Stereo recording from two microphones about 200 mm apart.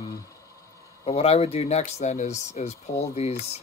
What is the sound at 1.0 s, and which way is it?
Speech, 30° left (ahead or behind).